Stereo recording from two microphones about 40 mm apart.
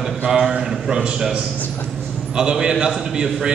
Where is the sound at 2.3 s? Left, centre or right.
Right.